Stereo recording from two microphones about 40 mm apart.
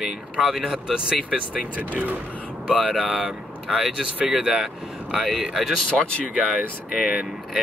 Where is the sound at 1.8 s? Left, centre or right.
Right.